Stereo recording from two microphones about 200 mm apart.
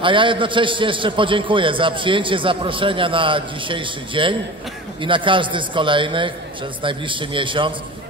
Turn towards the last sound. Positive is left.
turn(degrees=-25)  # may be behind; listen again after turning